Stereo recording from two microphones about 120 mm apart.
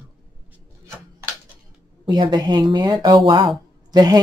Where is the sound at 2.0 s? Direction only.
35° right (ahead or behind).